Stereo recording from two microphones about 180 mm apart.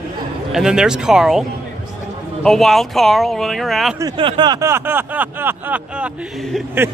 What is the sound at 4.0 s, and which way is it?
A man's voice, 25° right (ahead or behind).